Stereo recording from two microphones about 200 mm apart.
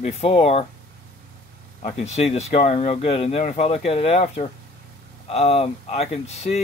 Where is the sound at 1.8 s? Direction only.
35° left (ahead or behind).